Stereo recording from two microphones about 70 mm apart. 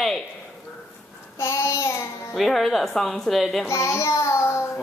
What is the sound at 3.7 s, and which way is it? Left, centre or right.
Child singing, left.